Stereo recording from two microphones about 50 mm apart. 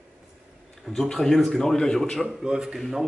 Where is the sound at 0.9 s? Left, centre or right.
Centre.